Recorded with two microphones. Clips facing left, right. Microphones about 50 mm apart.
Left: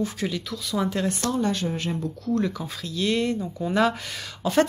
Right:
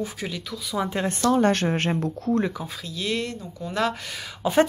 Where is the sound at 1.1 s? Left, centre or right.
Right.